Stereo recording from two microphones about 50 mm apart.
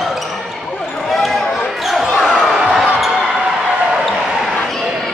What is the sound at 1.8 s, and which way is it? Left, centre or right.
Basketball bounce, centre.